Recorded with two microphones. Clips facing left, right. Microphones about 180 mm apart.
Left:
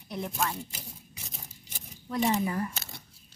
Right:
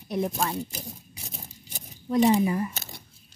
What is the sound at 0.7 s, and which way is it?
Scissors, 40° right (ahead or behind).